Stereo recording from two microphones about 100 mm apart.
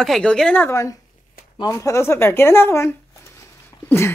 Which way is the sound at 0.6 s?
30° left (ahead or behind).